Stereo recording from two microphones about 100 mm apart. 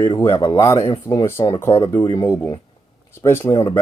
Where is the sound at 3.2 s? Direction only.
30° left (ahead or behind).